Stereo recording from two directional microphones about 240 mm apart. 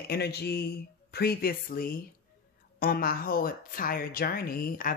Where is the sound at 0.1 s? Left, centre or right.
Left.